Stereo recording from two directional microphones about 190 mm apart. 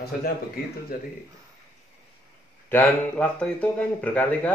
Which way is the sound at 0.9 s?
50° left (ahead or behind).